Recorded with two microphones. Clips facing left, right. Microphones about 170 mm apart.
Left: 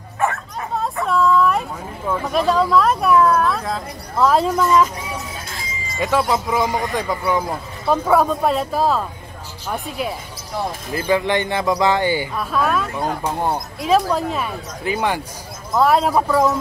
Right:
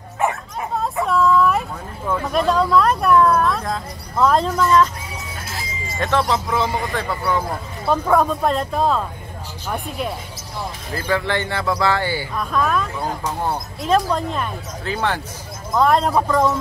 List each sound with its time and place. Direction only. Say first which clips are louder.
0.2 s bow-wow: even; 15° right (ahead or behind)
1.0 s a sound: even; centre (ahead or behind)
2.2 s speech: left 1 dB; centre (ahead or behind)
5.9 s speech: left 1 dB; 10° left (ahead or behind)
11.0 s speech: left 3 dB; 15° left (ahead or behind)
12.4 s speech: even; 5° left (ahead or behind)